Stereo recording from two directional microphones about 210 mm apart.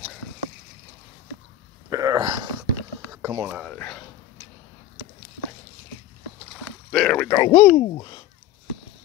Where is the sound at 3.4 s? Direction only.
5° right (ahead or behind).